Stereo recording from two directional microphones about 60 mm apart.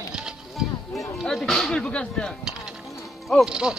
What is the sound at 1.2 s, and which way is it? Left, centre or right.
Speech, centre.